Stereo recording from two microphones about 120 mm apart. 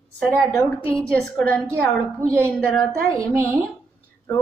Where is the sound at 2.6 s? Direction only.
10° left (ahead or behind).